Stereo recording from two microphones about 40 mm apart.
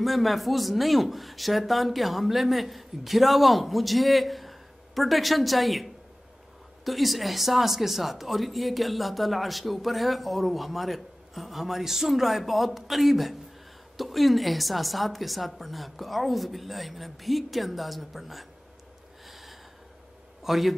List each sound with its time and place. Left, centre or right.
0.0 s speech: centre
19.2 s gasp: centre
20.4 s a man's voice: centre